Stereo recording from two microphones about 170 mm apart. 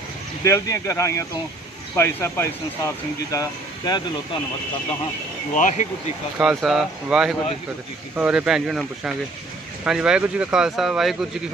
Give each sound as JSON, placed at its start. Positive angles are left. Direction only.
{"t": 0.4, "sound": "speech", "side_deg": 20}
{"t": 5.5, "sound": "speech", "side_deg": 45}
{"t": 6.3, "sound": "speech", "side_deg": -5}